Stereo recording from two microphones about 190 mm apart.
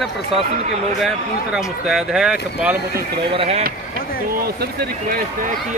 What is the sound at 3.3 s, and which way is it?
Speech, 30° right (ahead or behind).